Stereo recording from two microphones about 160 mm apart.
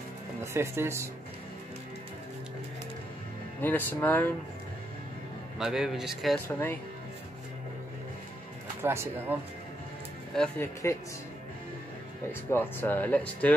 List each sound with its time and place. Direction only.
0.4 s speech: 15° right (ahead or behind)
3.6 s speech: 10° left (ahead or behind)
5.6 s speech: centre (ahead or behind)
6.3 s speech: 10° left (ahead or behind)
8.8 s speech: 15° right (ahead or behind)
10.6 s speech: 15° left (ahead or behind)
12.3 s speech: 15° left (ahead or behind)